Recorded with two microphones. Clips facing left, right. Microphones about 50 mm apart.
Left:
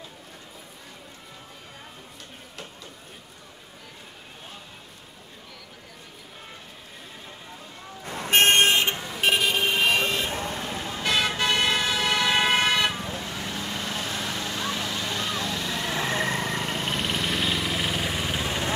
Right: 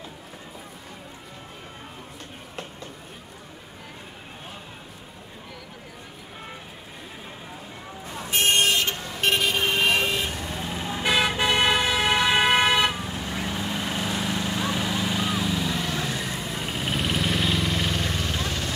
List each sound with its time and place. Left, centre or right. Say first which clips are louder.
8.1 s vehicle: left 4 dB; left
9.0 s vehicle: even; centre
10.5 s vehicle: right 1 dB; centre
16.1 s vehicle: left 4 dB; left
16.3 s vehicle: left 4 dB; left
16.6 s vehicle: even; centre